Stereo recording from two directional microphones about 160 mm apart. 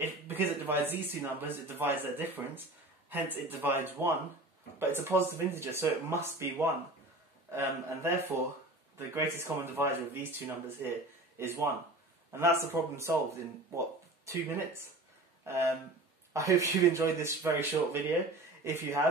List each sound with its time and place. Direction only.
0.0 s speech: 10° right (ahead or behind)